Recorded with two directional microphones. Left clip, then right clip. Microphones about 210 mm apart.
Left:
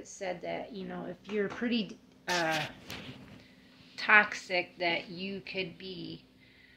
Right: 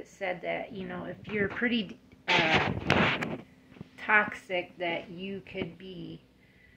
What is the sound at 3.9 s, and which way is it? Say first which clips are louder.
Speech: left 2 dB; 5° left (ahead or behind).